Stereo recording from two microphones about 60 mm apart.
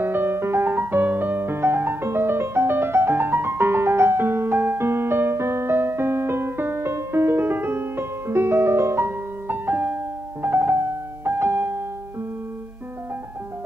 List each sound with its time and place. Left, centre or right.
0.0 s music: right
9.5 s music: right